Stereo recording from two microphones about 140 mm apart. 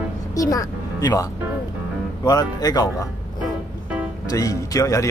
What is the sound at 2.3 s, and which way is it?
Speech, 30° left (ahead or behind).